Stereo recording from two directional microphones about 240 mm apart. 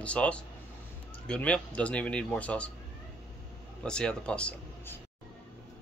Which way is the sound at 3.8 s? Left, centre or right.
Centre.